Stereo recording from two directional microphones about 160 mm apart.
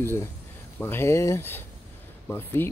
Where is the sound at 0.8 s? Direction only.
15° left (ahead or behind).